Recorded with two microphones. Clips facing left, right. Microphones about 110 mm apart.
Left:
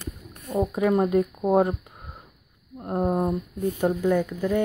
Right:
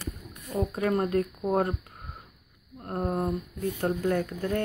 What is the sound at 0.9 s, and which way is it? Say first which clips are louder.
Speech: left 5 dB; 15° left (ahead or behind).